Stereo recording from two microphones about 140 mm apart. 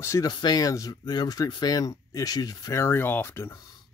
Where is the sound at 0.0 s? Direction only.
20° left (ahead or behind).